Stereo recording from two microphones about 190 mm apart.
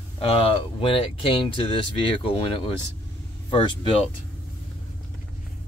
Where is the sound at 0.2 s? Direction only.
30° left (ahead or behind).